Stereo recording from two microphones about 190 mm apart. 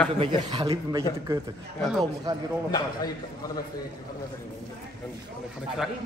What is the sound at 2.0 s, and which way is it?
Speech, 20° right (ahead or behind).